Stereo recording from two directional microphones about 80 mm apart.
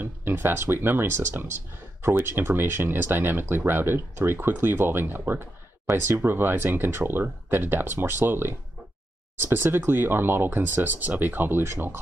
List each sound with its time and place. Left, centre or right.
0.0 s speech: right